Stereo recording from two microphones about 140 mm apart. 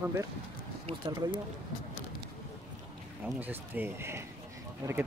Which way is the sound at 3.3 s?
15° right (ahead or behind).